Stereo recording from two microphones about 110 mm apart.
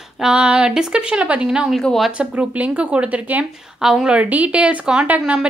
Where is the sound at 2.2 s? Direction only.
15° right (ahead or behind).